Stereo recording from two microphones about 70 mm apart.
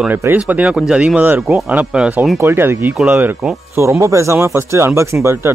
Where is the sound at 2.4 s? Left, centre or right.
Right.